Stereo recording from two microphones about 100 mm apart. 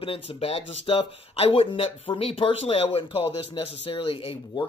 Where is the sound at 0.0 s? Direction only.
75° left (ahead or behind).